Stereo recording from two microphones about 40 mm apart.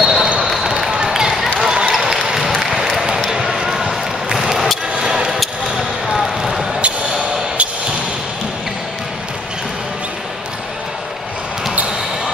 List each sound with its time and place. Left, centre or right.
0.0 s basketball bounce: centre
0.9 s basketball bounce: centre
1.6 s a sound: centre
5.4 s basketball bounce: centre